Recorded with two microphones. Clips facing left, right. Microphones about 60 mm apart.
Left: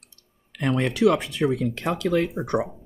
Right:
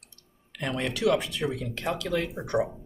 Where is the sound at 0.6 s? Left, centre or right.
Left.